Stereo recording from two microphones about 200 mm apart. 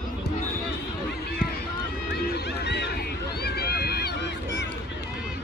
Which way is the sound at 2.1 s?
55° left (ahead or behind).